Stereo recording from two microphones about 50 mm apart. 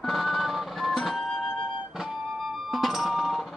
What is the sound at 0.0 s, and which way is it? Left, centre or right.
Music, centre.